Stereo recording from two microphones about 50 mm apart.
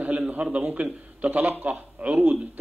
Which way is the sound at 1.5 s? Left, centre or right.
Right.